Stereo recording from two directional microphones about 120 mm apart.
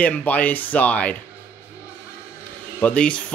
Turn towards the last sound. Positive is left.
turn(degrees=10)  # may be behind; listen again after turning